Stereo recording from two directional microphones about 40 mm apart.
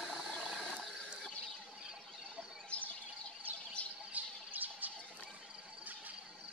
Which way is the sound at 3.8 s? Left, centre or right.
Left.